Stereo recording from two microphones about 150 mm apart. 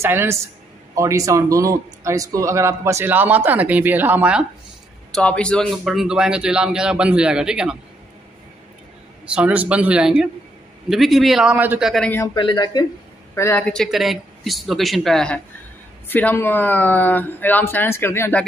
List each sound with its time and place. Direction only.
0.0 s speech: 15° right (ahead or behind)
5.1 s a man's voice: 5° left (ahead or behind)
9.2 s a man's voice: 10° right (ahead or behind)
11.9 s speech: 10° left (ahead or behind)
12.4 s speech: 30° left (ahead or behind)
13.3 s speech: 15° left (ahead or behind)
13.7 s a man's voice: centre (ahead or behind)